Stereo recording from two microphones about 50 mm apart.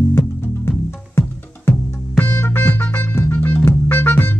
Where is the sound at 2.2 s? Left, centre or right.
Left.